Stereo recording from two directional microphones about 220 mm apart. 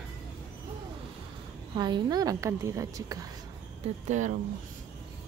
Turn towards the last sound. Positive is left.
turn(degrees=-35)  # may be behind; listen again after turning